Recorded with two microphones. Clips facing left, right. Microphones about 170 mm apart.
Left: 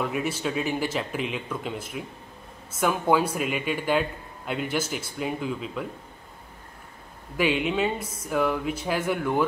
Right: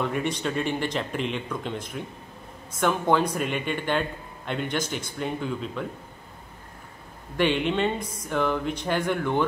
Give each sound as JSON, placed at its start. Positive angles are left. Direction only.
{"t": 0.0, "sound": "speech", "side_deg": 5}
{"t": 7.3, "sound": "speech", "side_deg": 5}